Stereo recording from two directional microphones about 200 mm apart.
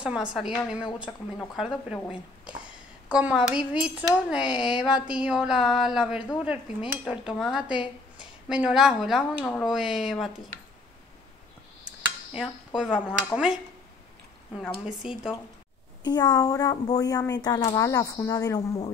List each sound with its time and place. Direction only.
0.0 s speech: 5° right (ahead or behind)
3.1 s speech: 5° right (ahead or behind)
12.3 s speech: 5° right (ahead or behind)
14.6 s speech: 5° right (ahead or behind)
16.0 s speech: 20° left (ahead or behind)